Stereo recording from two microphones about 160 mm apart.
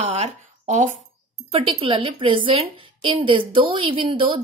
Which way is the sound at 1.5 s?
35° right (ahead or behind).